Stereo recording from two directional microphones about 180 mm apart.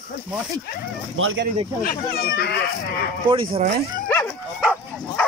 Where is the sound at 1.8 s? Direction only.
60° left (ahead or behind).